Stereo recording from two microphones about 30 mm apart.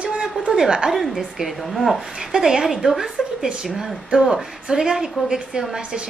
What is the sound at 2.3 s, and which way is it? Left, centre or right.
A woman's voice, centre.